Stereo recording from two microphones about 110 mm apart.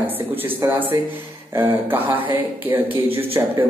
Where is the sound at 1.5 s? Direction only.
20° right (ahead or behind).